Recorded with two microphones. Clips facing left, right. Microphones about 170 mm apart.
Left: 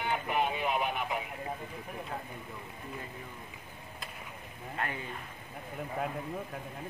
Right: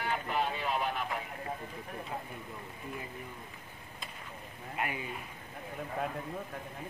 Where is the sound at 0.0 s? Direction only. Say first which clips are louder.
Left 2 dB; 15° left (ahead or behind).